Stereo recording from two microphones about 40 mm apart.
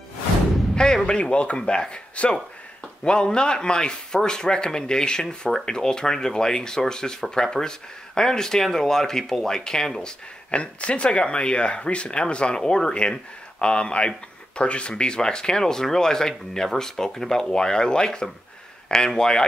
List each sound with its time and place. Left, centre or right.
1.0 s speech: left
10.6 s speech: left